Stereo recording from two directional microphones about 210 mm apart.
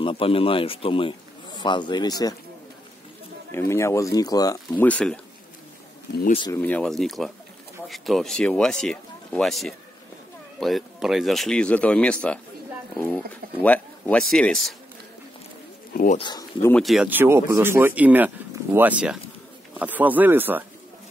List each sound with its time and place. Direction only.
0.0 s speech: 25° left (ahead or behind)
3.5 s speech: 15° left (ahead or behind)
6.5 s speech: 5° left (ahead or behind)
15.9 s speech: 40° left (ahead or behind)
16.2 s speech: 20° left (ahead or behind)
16.7 s speech: centre (ahead or behind)